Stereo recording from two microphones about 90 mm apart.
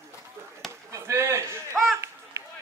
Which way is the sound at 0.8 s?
35° right (ahead or behind).